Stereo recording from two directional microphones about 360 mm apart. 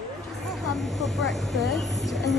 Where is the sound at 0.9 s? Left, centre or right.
Centre.